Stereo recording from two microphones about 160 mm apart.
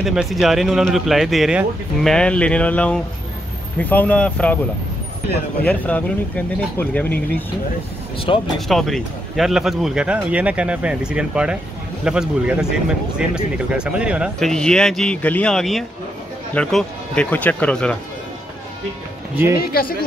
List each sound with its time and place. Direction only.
0.0 s speech: 5° right (ahead or behind)
5.7 s speech: 10° left (ahead or behind)
8.5 s speech: centre (ahead or behind)
14.5 s speech: 5° left (ahead or behind)
19.6 s speech: 70° left (ahead or behind)